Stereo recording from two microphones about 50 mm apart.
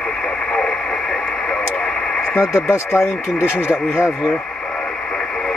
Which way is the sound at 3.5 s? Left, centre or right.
Left.